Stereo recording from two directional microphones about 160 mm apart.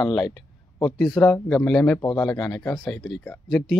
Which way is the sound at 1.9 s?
20° left (ahead or behind).